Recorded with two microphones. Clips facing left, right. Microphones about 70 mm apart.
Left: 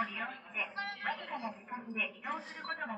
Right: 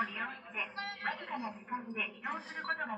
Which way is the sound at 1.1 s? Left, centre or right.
Centre.